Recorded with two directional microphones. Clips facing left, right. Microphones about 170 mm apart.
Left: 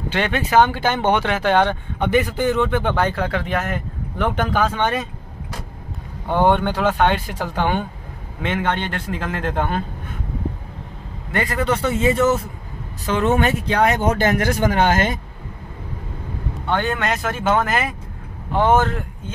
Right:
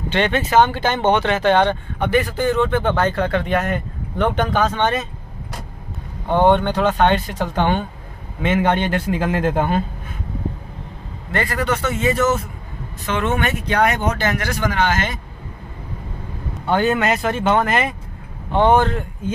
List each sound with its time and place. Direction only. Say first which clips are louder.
0.1 s speech: right 1 dB; 10° left (ahead or behind)
6.3 s speech: right 2 dB; 10° left (ahead or behind)
8.4 s speech: right 4 dB; 5° right (ahead or behind)
11.3 s speech: even; 20° left (ahead or behind)
13.9 s speech: left 3 dB; 45° left (ahead or behind)
16.6 s speech: right 4 dB; 10° right (ahead or behind)